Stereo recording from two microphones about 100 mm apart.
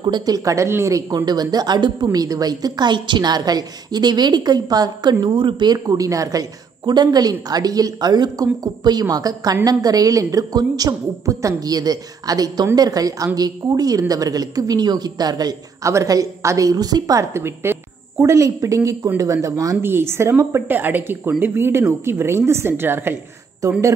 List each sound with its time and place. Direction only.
0.0 s a woman's voice: 45° right (ahead or behind); by 1.0 s 25° right (ahead or behind)
1.1 s a woman's voice: 40° right (ahead or behind)
5.2 s a woman's voice: 50° right (ahead or behind); by 19.8 s 35° right (ahead or behind)
19.8 s speech: 25° right (ahead or behind)
23.6 s a woman's voice: 35° right (ahead or behind)